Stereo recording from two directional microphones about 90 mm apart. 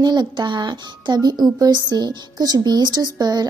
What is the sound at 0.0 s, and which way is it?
Speech, 50° right (ahead or behind).